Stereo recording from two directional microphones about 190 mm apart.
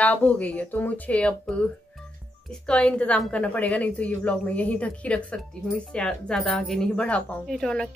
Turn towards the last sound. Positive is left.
turn(degrees=0)  # may be behind; listen again after turning